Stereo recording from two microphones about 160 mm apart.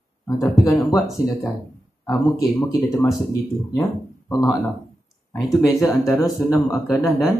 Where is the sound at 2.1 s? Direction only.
20° left (ahead or behind).